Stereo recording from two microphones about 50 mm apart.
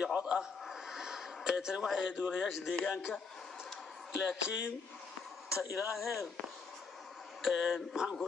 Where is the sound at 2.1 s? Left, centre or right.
Centre.